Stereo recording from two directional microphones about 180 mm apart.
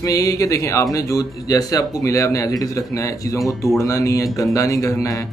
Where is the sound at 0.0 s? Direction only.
20° left (ahead or behind).